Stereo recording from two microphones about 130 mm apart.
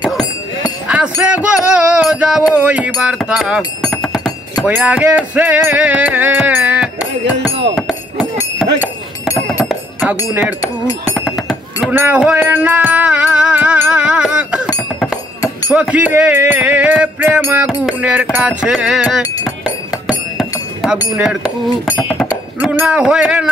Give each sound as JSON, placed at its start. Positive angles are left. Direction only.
{"t": 0.8, "sound": "music", "side_deg": -10}
{"t": 4.6, "sound": "music", "side_deg": -10}
{"t": 7.4, "sound": "a sound", "side_deg": 5}
{"t": 10.0, "sound": "music", "side_deg": -10}
{"t": 11.1, "sound": "a sound", "side_deg": 0}
{"t": 11.9, "sound": "music", "side_deg": -15}
{"t": 15.7, "sound": "music", "side_deg": -10}
{"t": 21.9, "sound": "speech", "side_deg": 5}
{"t": 22.3, "sound": "speech", "side_deg": -15}